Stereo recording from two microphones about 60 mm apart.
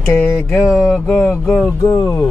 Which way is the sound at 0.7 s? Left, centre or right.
Centre.